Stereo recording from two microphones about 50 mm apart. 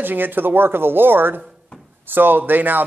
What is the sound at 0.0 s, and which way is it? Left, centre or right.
Speech, right.